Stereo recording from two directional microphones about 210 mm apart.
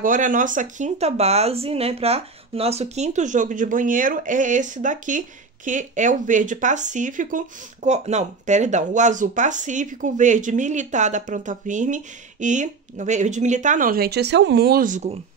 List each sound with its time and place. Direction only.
0.0 s speech: 40° right (ahead or behind)